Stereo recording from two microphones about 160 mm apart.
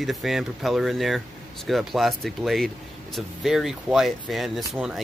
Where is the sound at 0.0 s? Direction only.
Centre (ahead or behind).